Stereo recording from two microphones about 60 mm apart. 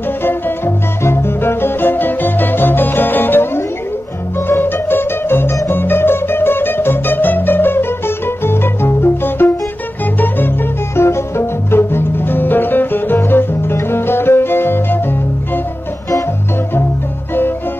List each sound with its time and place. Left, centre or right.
0.2 s music: left
11.0 s music: left